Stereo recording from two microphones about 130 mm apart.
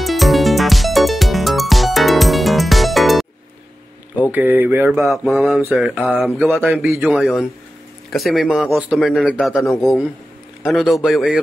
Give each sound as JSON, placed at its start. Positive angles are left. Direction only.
{"t": 0.0, "sound": "music", "side_deg": 0}
{"t": 4.2, "sound": "speech", "side_deg": -15}
{"t": 5.0, "sound": "a man's voice", "side_deg": 0}
{"t": 6.6, "sound": "speech", "side_deg": -15}
{"t": 7.1, "sound": "a man's voice", "side_deg": 0}